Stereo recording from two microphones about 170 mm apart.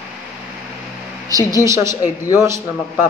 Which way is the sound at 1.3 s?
20° right (ahead or behind).